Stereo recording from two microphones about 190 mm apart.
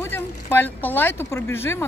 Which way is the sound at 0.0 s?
10° left (ahead or behind).